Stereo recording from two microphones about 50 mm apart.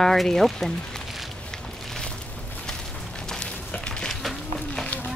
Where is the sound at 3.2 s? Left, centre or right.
Centre.